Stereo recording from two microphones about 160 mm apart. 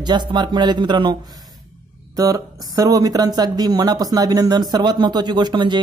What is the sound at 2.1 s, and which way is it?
Speech, 25° right (ahead or behind).